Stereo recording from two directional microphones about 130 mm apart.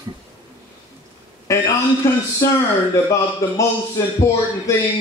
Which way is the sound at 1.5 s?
25° left (ahead or behind).